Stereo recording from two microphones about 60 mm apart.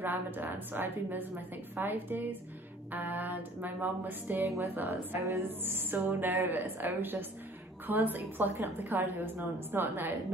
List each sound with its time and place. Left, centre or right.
0.0 s a woman's voice: right